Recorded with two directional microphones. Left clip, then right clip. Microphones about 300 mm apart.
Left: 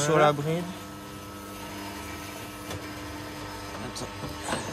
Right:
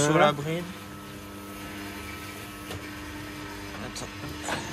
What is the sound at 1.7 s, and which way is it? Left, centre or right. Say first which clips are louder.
Vehicle: left 1 dB; left.